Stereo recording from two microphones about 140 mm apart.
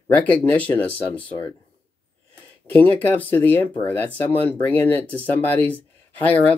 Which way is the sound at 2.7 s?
10° left (ahead or behind).